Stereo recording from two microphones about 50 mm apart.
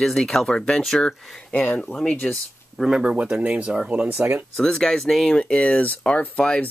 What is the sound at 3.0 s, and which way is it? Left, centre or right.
Speech, right.